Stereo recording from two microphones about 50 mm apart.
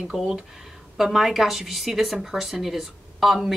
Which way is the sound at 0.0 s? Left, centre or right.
Centre.